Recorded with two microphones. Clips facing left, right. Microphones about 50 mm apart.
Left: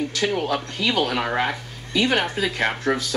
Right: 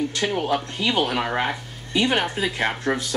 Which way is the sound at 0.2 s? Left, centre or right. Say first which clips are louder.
Left 1 dB; centre.